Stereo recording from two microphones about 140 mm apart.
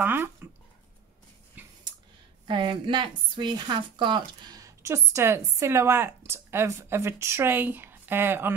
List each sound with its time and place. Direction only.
0.0 s speech: 15° right (ahead or behind)
1.6 s a sound: 10° right (ahead or behind)
2.4 s a woman's voice: 35° right (ahead or behind); by 8.5 s 15° right (ahead or behind)